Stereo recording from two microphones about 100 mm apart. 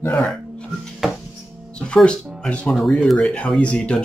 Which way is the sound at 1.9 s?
10° left (ahead or behind).